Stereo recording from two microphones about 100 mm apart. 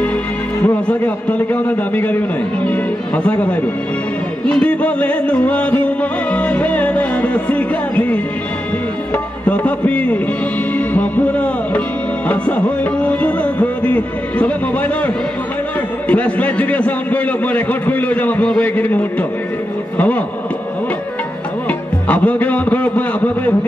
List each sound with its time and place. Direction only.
0.8 s a man's voice: 15° left (ahead or behind)
3.3 s a man's voice: 15° left (ahead or behind)
10.7 s music: 15° left (ahead or behind)
12.3 s a man's voice: 15° left (ahead or behind)
16.1 s a man's voice: 15° left (ahead or behind)
21.6 s a man's voice: 15° left (ahead or behind)